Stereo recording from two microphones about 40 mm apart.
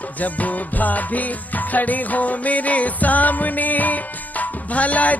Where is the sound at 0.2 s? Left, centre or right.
Left.